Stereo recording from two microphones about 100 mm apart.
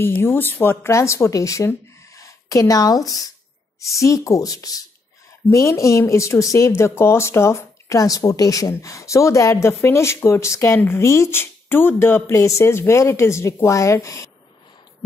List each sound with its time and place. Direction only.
0.0 s speech: 25° left (ahead or behind)
1.7 s a sound: 30° left (ahead or behind)
3.9 s speech: 30° left (ahead or behind)